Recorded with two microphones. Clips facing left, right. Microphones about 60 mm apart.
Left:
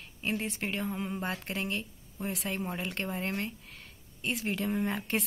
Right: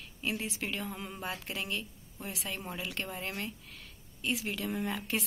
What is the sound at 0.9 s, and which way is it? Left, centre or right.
Speech, centre.